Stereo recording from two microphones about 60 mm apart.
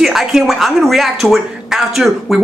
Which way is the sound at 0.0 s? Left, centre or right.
Centre.